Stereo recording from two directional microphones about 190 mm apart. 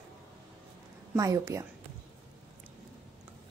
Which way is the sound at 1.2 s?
15° right (ahead or behind).